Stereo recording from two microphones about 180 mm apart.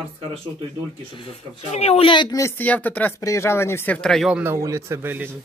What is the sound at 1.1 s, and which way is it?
Speech, 30° left (ahead or behind).